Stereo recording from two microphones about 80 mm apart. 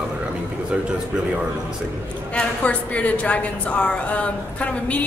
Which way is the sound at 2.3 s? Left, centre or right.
Centre.